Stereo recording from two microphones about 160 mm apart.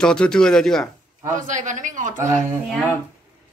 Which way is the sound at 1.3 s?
50° right (ahead or behind).